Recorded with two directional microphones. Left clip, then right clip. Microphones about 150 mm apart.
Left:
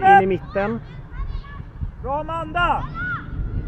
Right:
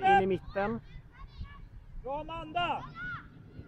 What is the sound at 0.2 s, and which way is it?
Speech, 25° right (ahead or behind).